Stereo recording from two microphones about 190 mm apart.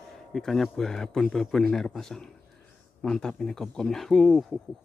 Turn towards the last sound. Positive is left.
turn(degrees=0)  # may be behind; listen again after turning